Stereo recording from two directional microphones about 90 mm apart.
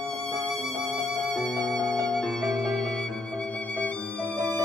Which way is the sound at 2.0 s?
5° left (ahead or behind).